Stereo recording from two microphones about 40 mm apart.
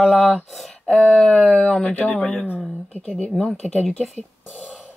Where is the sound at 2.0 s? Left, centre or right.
Left.